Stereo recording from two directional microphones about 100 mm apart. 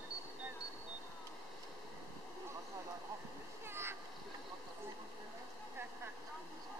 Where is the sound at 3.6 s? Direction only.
25° right (ahead or behind).